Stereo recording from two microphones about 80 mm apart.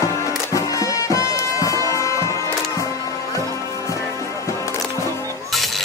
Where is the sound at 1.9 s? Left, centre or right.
Left.